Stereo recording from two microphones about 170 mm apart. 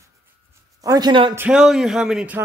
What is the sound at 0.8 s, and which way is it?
Speech, 25° right (ahead or behind).